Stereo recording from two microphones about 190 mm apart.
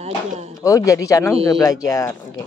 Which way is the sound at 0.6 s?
15° left (ahead or behind).